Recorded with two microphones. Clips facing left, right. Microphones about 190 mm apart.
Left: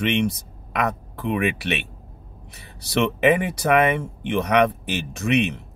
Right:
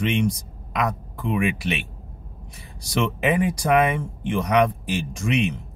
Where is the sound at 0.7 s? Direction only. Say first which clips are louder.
Left 1 dB; 60° left (ahead or behind).